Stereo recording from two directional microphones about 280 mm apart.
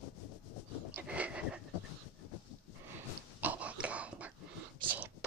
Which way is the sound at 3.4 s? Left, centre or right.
Centre.